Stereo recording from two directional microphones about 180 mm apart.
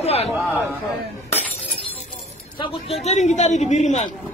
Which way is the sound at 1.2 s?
10° left (ahead or behind).